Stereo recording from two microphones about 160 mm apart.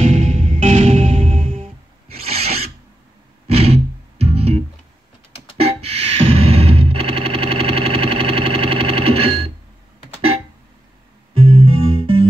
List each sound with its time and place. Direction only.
0.0 s music: 50° right (ahead or behind)
2.2 s filing: 40° right (ahead or behind)
3.4 s music: 40° right (ahead or behind)
5.6 s a sound: 40° right (ahead or behind)
11.6 s music: 35° right (ahead or behind)